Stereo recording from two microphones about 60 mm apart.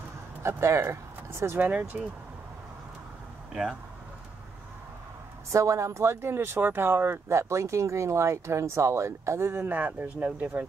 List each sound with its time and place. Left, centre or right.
0.4 s speech: right
1.6 s speech: right
5.5 s speech: right
9.6 s speech: right